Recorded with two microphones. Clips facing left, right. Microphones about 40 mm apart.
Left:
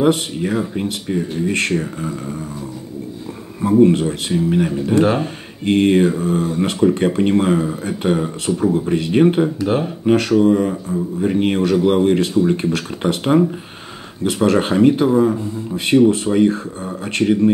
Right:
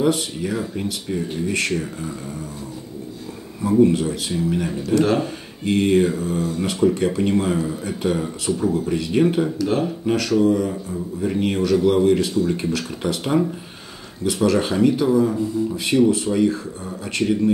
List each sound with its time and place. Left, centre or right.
0.0 s speech: left
3.6 s speech: left